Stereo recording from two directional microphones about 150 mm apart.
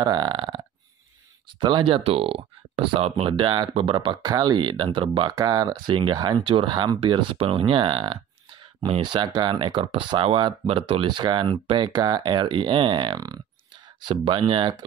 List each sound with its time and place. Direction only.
0.0 s speech: 30° right (ahead or behind)
1.6 s speech: 35° right (ahead or behind)